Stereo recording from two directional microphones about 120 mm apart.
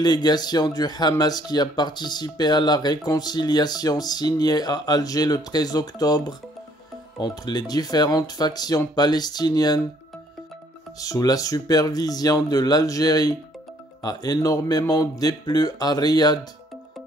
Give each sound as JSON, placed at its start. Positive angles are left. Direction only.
{"t": 0.0, "sound": "speech", "side_deg": 35}
{"t": 11.0, "sound": "speech", "side_deg": 30}